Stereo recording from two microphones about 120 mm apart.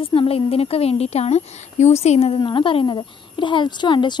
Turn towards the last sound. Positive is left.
turn(degrees=40)  # may be behind; listen again after turning